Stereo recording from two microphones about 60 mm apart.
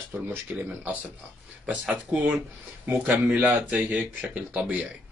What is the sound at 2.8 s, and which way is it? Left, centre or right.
Speech, right.